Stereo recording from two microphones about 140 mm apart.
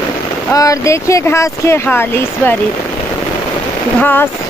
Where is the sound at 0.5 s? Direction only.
25° left (ahead or behind).